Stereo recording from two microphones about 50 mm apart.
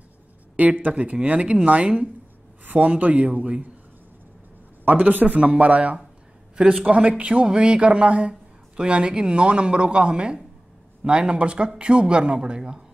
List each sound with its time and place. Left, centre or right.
0.6 s a man's voice: right
4.8 s speech: right
6.5 s a man's voice: centre
6.9 s speech: right